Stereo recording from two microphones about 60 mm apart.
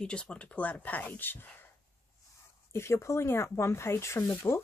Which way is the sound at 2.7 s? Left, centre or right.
Left.